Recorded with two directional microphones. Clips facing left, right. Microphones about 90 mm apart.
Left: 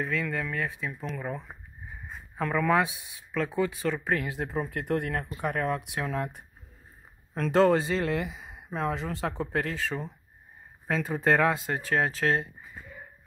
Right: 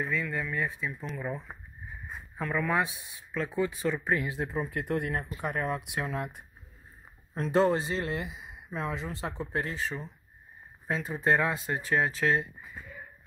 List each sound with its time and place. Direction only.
0.0 s speech: 85° left
2.3 s speech: 75° left (ahead or behind); by 3.4 s 90° left
3.5 s speech: 70° left (ahead or behind)
7.3 s speech: 80° left
8.3 s speech: 45° left (ahead or behind)
10.9 s speech: 65° left (ahead or behind)